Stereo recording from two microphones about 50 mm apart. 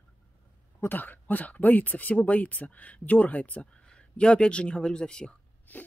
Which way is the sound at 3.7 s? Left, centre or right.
Centre.